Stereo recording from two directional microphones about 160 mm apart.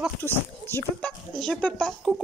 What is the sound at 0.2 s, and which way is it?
Speech, 15° left (ahead or behind).